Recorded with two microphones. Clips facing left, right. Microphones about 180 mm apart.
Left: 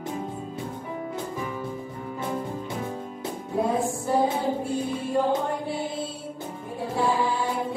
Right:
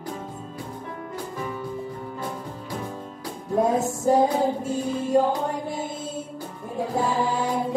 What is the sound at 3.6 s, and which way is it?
Music, 45° right (ahead or behind).